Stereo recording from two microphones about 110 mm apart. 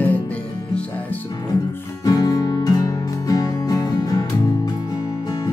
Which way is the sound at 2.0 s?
35° left (ahead or behind).